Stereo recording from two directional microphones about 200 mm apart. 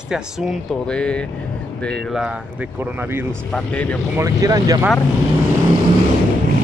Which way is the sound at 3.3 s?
5° left (ahead or behind).